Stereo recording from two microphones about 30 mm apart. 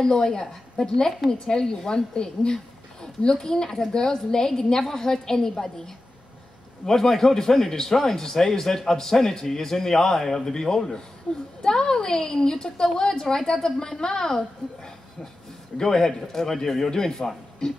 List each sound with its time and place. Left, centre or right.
0.0 s a woman's voice: left